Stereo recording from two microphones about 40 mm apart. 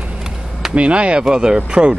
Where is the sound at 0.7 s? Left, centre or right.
Right.